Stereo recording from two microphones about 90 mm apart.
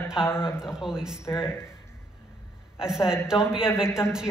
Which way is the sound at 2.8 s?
5° right (ahead or behind).